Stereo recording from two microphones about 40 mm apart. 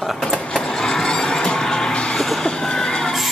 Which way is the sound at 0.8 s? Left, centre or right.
Centre.